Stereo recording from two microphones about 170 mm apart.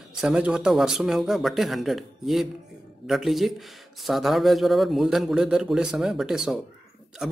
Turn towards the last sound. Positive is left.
turn(degrees=-5)  # may be behind; listen again after turning